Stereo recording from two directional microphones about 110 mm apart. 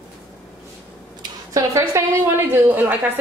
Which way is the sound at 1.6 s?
30° right (ahead or behind).